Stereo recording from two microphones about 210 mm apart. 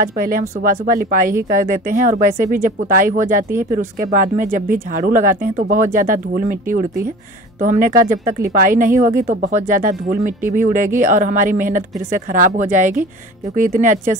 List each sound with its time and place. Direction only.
0.2 s speech: 40° right (ahead or behind)